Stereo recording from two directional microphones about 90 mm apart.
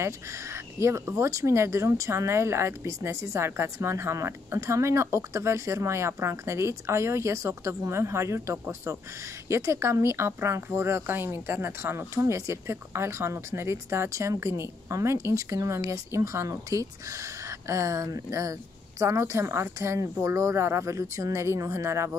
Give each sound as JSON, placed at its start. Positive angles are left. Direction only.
{"t": 0.0, "sound": "speech", "side_deg": -30}